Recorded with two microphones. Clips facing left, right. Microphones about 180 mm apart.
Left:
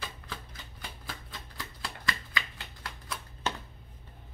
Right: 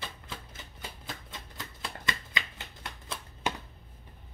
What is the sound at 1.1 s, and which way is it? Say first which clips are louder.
Shuffling cards: right 1 dB; 20° right (ahead or behind).